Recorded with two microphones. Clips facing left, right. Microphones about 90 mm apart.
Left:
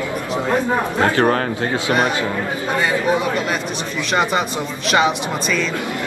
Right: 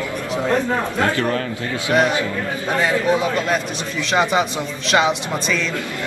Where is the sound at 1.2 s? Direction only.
50° left (ahead or behind).